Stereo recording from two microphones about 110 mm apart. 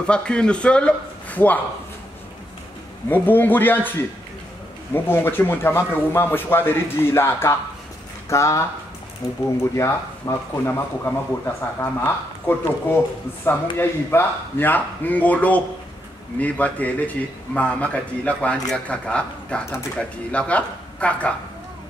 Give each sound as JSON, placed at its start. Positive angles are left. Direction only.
{"t": 0.0, "sound": "a man's voice", "side_deg": 10}
{"t": 3.1, "sound": "a man's voice", "side_deg": 15}